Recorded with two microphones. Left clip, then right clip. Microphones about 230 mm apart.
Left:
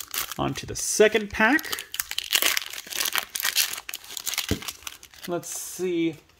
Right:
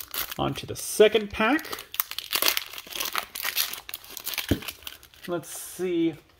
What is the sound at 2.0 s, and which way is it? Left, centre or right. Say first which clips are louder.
Crumpling: left 4 dB; centre.